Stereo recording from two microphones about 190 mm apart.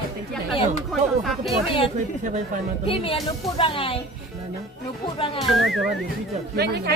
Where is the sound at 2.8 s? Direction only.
30° left (ahead or behind).